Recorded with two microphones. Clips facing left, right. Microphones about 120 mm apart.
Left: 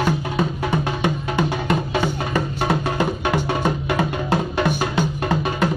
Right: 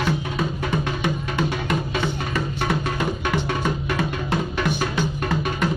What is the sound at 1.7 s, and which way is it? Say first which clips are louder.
Music: left 3 dB; 30° left (ahead or behind).